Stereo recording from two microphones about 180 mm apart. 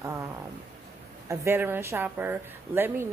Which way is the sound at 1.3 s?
15° right (ahead or behind).